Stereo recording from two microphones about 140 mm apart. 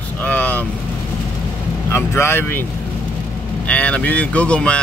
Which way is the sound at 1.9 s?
15° left (ahead or behind).